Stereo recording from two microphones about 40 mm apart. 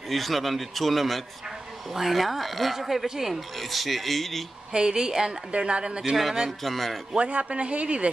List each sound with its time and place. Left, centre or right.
0.1 s speech: centre
4.7 s a woman's voice: centre
6.1 s speech: centre
7.2 s speech: right